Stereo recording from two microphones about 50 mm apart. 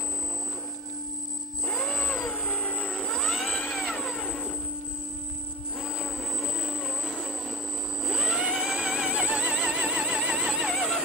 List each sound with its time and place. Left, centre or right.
1.9 s vehicle: left
3.2 s vehicle: centre
4.2 s music: centre
6.0 s vehicle: centre
8.0 s a sound: centre
10.5 s music: centre